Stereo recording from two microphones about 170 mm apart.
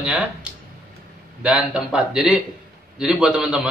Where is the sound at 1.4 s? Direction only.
5° right (ahead or behind).